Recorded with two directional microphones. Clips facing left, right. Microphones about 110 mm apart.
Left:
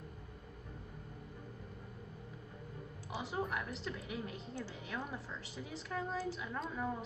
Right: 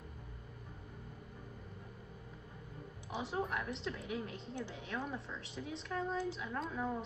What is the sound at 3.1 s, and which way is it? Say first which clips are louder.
A woman's voice: right 1 dB; centre (ahead or behind).